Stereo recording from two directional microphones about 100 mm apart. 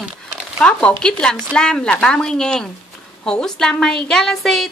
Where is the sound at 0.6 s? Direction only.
10° left (ahead or behind).